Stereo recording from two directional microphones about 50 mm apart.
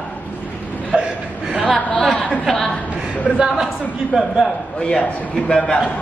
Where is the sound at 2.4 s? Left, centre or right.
Centre.